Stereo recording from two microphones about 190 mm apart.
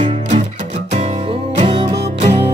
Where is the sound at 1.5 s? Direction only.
30° right (ahead or behind).